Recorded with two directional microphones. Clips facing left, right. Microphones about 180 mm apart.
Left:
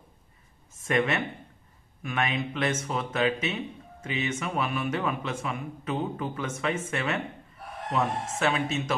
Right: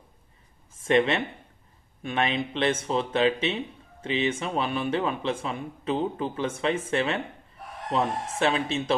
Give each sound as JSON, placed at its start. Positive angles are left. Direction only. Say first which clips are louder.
{"t": 0.7, "sound": "speech", "louder": "right 4 dB", "side_deg": -30}